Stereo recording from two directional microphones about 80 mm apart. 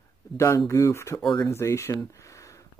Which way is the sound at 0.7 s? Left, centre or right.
Left.